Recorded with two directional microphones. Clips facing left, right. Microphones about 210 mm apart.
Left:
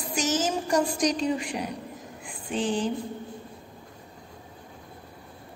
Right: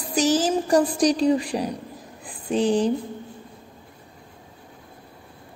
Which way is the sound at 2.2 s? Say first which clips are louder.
Right 7 dB; 40° right (ahead or behind).